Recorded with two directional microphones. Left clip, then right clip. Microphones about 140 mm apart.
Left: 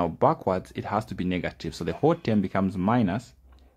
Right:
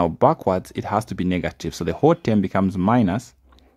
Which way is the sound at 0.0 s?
40° right (ahead or behind).